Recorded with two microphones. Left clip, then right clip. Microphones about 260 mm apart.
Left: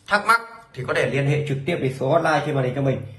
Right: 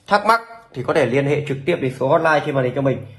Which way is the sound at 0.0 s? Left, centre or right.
Centre.